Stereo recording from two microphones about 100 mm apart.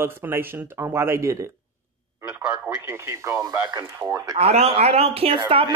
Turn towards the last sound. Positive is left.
turn(degrees=-70)  # may be behind; listen again after turning